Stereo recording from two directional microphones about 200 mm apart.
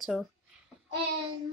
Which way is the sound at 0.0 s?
Centre (ahead or behind).